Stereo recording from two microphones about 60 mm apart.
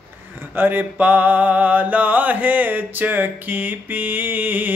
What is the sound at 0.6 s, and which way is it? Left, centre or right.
Mantra, right.